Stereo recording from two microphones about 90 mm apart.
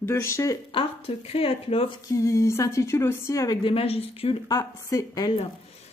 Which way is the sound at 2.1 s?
35° left (ahead or behind).